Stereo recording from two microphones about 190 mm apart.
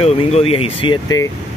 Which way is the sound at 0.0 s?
30° left (ahead or behind).